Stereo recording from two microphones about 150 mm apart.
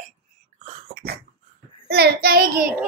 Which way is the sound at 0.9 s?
70° right (ahead or behind).